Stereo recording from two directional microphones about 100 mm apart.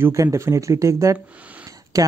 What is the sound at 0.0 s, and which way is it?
Speech, 30° right (ahead or behind).